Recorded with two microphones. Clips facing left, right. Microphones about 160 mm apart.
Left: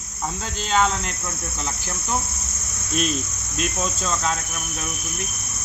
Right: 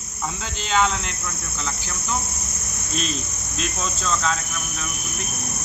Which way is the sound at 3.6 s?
10° left (ahead or behind).